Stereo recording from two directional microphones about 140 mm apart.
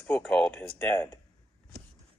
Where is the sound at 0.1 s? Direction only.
5° left (ahead or behind).